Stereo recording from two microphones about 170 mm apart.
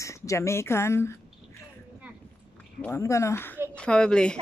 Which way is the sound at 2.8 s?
15° left (ahead or behind).